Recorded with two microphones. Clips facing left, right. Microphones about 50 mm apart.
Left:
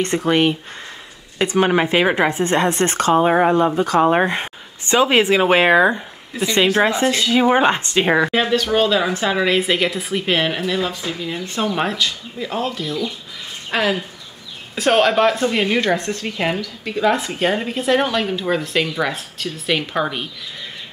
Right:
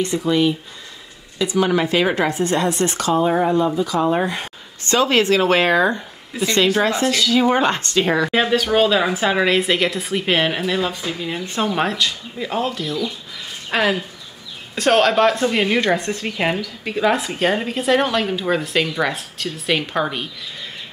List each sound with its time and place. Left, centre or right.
0.0 s a woman's voice: left
4.8 s speech: centre
8.3 s a woman's voice: centre